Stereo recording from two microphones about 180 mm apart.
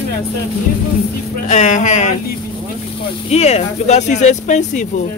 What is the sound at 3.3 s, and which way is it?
Speech, 35° left (ahead or behind).